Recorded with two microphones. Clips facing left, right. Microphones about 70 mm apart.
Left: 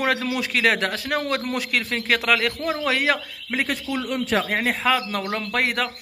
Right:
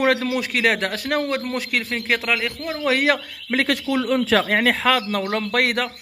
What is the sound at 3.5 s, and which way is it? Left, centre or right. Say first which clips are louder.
Speech: right 5 dB; right.